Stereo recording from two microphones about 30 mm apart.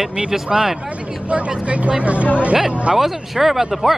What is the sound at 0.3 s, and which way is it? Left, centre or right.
Speech, centre.